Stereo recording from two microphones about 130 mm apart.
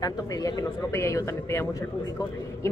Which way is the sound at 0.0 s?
30° left (ahead or behind).